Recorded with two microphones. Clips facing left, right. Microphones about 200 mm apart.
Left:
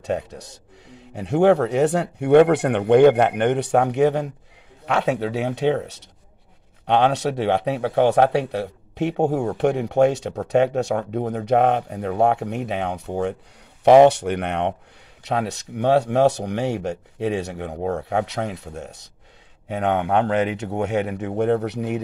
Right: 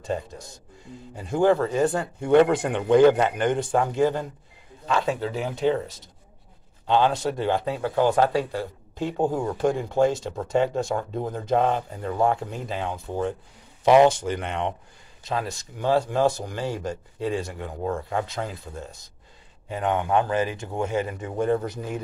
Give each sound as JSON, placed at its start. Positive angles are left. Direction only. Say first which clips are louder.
{"t": 0.0, "sound": "speech", "louder": "left 4 dB", "side_deg": 70}